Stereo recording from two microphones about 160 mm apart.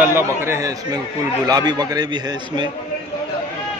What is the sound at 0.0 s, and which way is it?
A man's voice, 15° right (ahead or behind).